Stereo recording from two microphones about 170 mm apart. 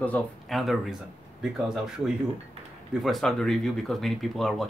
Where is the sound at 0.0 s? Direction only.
5° left (ahead or behind).